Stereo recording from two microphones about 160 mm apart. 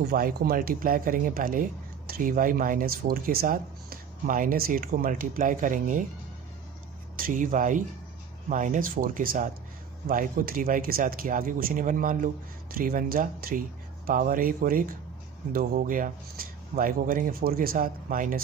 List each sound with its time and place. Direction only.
0.0 s speech: 65° right (ahead or behind)
7.2 s speech: 60° right (ahead or behind)